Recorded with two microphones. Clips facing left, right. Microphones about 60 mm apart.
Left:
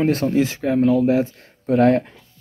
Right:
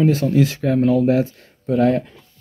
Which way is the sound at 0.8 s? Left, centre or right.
Centre.